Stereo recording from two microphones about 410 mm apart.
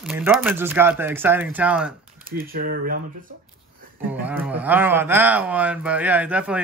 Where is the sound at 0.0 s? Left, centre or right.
Centre.